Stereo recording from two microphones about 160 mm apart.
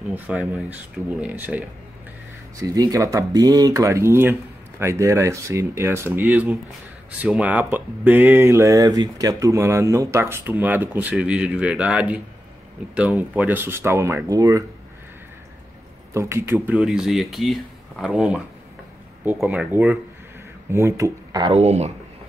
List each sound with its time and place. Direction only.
0.1 s speech: 10° right (ahead or behind)
2.6 s speech: 20° right (ahead or behind)
16.1 s speech: 15° right (ahead or behind)
19.4 s speech: 10° right (ahead or behind)
21.5 s speech: 40° right (ahead or behind)